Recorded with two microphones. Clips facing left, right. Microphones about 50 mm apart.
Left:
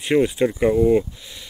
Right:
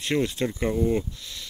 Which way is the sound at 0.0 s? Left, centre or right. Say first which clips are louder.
Left 7 dB; centre.